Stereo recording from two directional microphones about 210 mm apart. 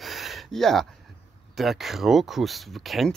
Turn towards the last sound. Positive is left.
turn(degrees=0)  # may be behind; listen again after turning